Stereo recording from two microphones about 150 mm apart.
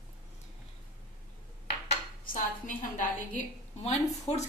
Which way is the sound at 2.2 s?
65° left (ahead or behind).